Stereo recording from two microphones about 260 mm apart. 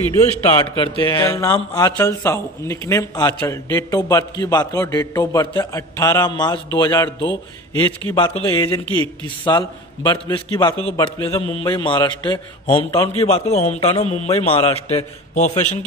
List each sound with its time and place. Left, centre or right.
0.7 s a man's voice: centre